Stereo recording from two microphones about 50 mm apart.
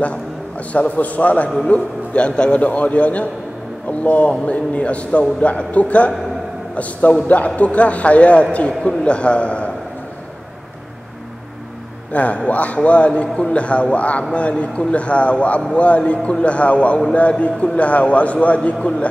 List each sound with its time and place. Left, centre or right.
0.0 s a man's voice: left
12.1 s a man's voice: left